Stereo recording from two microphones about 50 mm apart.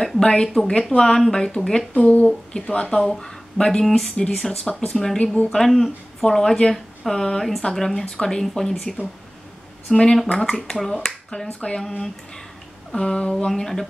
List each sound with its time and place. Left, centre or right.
0.0 s speech: centre
2.0 s speech: left
3.8 s speech: centre
5.2 s speech: left
5.5 s speech: centre
9.9 s speech: centre
12.9 s speech: centre
13.5 s speech: centre